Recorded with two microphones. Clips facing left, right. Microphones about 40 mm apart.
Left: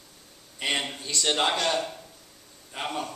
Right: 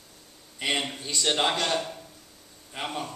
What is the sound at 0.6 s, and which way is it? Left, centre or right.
A man's voice, centre.